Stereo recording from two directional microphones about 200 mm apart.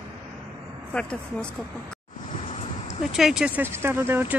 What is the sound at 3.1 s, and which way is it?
Speech, 5° right (ahead or behind).